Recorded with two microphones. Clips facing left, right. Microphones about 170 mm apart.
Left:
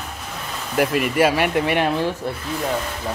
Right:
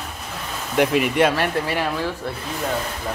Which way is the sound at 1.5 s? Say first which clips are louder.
Left 4 dB; 20° left (ahead or behind).